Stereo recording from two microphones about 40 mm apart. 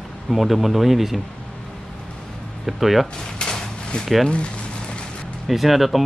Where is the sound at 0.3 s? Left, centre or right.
Centre.